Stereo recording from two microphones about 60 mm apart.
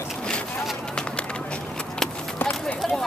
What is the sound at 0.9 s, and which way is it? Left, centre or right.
Run, centre.